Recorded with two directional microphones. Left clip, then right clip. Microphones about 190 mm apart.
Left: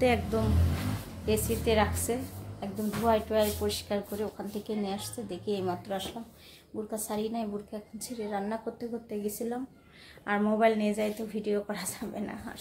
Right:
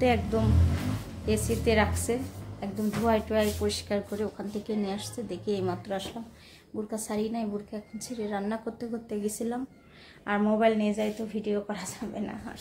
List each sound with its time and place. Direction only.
0.0 s a woman's voice: centre (ahead or behind)